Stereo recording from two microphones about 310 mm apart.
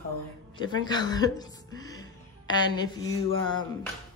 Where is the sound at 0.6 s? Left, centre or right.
Centre.